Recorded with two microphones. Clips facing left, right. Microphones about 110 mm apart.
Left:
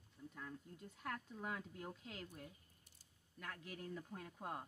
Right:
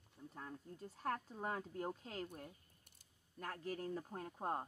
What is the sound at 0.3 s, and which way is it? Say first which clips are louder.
Speech: right 2 dB; 35° right (ahead or behind).